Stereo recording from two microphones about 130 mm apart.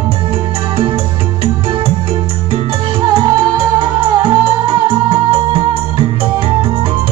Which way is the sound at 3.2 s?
40° right (ahead or behind).